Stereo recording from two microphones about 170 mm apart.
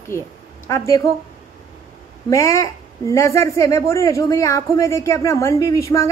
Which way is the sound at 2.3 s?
15° left (ahead or behind).